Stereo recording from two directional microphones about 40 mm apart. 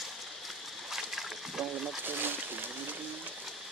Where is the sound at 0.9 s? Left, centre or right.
Centre.